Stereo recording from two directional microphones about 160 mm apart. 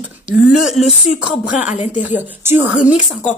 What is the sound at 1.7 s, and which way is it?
Speech, 50° left (ahead or behind).